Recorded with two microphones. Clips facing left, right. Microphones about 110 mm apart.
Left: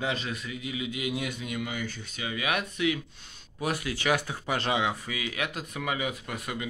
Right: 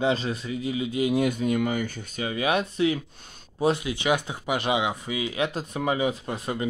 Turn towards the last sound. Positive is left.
turn(degrees=-30)  # may be behind; listen again after turning